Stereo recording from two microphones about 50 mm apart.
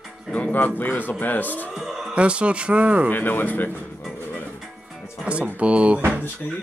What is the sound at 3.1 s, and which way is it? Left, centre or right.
Speech, left.